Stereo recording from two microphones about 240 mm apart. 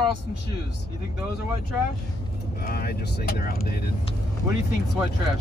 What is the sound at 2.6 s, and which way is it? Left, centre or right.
Speech, left.